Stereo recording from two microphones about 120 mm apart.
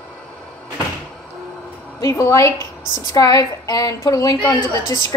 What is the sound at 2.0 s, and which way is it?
Speech, 25° left (ahead or behind).